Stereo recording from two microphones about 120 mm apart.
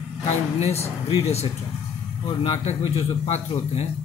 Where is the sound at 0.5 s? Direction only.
60° left (ahead or behind).